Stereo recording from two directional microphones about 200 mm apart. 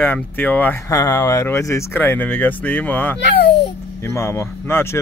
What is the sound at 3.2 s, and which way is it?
Babbling, 60° left (ahead or behind).